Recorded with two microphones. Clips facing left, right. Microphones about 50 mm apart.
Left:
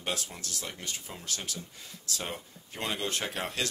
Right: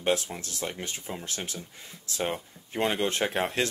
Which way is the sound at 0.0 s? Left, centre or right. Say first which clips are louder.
Right 8 dB; right.